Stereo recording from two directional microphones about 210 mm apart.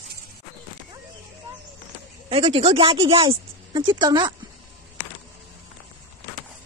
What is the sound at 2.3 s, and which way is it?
Speech, 25° right (ahead or behind).